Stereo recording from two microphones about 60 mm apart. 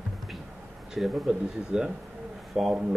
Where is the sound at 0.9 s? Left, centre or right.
Centre.